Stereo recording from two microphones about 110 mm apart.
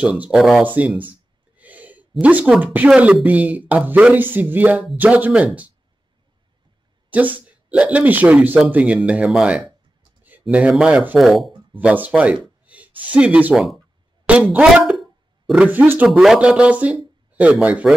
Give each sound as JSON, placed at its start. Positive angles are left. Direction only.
{"t": 0.0, "sound": "speech", "side_deg": -10}
{"t": 0.7, "sound": "speech", "side_deg": -15}
{"t": 1.6, "sound": "a sound", "side_deg": -15}
{"t": 2.2, "sound": "speech", "side_deg": -10}
{"t": 7.4, "sound": "speech", "side_deg": -10}
{"t": 11.7, "sound": "speech", "side_deg": -15}
{"t": 16.1, "sound": "speech", "side_deg": -5}